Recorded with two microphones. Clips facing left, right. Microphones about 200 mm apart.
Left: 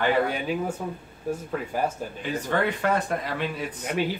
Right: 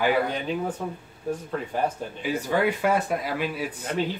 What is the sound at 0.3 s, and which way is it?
A man's voice, 10° left (ahead or behind).